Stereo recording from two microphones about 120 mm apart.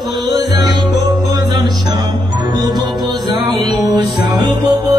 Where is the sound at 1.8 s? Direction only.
35° right (ahead or behind).